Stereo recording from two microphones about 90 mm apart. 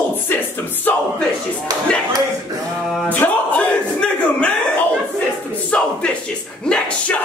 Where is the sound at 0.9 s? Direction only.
20° left (ahead or behind).